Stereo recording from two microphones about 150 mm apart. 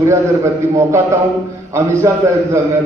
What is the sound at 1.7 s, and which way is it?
A man's voice, 20° right (ahead or behind).